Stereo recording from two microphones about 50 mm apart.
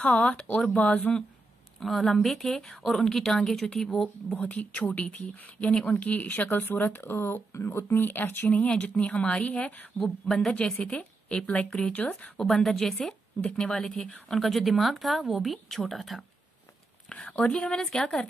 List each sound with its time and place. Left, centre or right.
0.1 s a woman's voice: left
0.4 s a woman's voice: centre
1.8 s a woman's voice: centre
4.4 s a woman's voice: left
8.6 s a woman's voice: left
10.2 s a woman's voice: centre
10.5 s a woman's voice: centre
12.4 s a woman's voice: centre
13.4 s a woman's voice: centre
17.1 s a woman's voice: left